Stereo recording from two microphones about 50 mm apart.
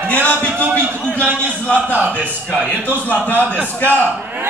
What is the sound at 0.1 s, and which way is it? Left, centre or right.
Speech, left.